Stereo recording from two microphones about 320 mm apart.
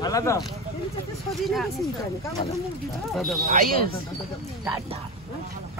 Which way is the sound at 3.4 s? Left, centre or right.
Right.